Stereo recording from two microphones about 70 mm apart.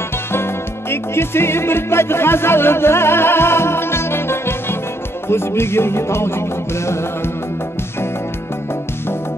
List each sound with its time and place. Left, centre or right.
0.3 s music: left